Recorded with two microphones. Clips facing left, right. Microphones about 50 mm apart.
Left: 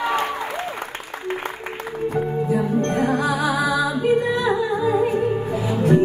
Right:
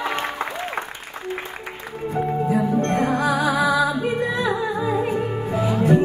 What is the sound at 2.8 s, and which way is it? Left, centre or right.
Music, right.